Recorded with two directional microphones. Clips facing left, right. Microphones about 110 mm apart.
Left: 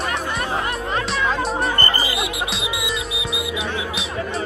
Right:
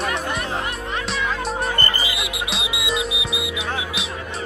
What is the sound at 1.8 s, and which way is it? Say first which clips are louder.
Music: left 3 dB; 35° left (ahead or behind).